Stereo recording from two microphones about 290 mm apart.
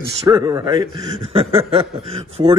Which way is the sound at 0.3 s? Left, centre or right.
Centre.